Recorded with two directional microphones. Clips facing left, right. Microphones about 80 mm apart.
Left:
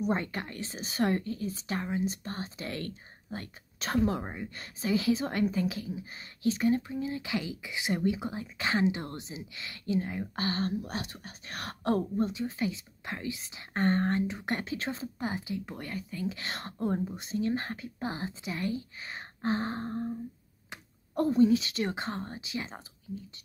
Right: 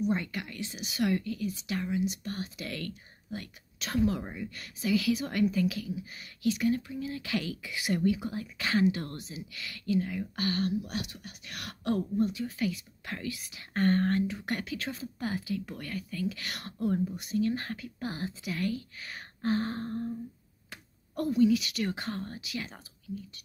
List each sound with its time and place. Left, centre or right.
0.0 s a woman's voice: left